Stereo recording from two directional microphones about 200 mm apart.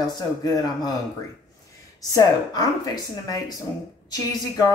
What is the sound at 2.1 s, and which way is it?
A woman's voice, 20° left (ahead or behind).